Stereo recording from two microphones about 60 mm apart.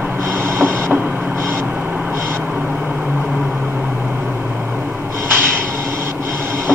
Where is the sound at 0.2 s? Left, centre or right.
Right.